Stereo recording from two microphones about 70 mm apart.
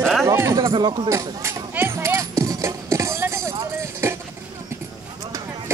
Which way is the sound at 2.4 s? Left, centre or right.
Right.